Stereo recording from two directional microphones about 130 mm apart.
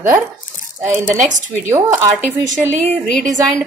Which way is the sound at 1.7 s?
20° right (ahead or behind).